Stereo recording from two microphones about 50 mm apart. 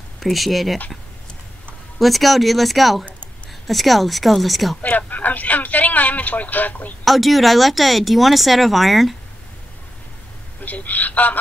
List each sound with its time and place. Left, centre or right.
0.2 s speech: centre
2.0 s speech: centre
4.8 s a man's voice: left
7.1 s speech: centre
10.6 s a woman's voice: left